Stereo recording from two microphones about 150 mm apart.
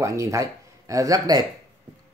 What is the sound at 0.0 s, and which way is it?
Speech, 20° right (ahead or behind).